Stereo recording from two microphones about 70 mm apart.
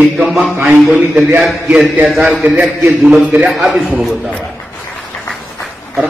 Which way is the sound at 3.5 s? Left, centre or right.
Centre.